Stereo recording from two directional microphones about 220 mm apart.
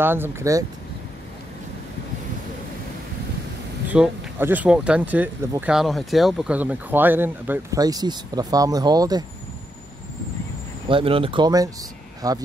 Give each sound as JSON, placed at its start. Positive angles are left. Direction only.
{"t": 0.0, "sound": "speech", "side_deg": -10}
{"t": 3.9, "sound": "speech", "side_deg": -5}
{"t": 10.9, "sound": "speech", "side_deg": -25}